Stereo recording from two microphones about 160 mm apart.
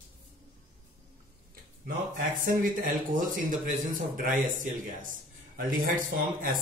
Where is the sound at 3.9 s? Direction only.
55° right (ahead or behind).